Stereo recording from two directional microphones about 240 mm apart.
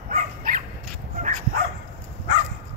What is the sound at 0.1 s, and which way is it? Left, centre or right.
Dog, right.